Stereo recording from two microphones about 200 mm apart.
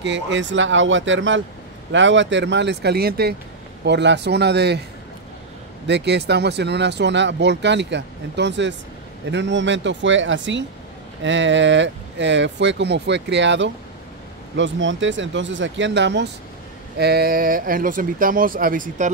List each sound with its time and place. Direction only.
0.0 s speech: 65° right (ahead or behind)
5.9 s speech: 60° right (ahead or behind); by 19.1 s 40° right (ahead or behind)